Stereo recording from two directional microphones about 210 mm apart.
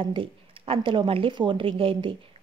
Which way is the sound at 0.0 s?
25° right (ahead or behind).